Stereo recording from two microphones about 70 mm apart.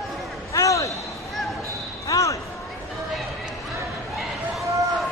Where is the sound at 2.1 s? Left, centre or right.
Left.